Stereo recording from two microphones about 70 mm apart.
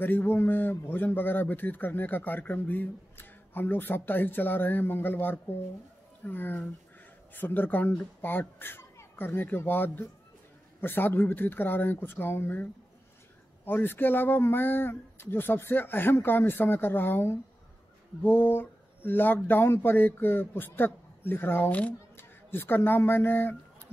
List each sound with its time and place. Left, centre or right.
0.0 s a man's voice: left
13.7 s speech: left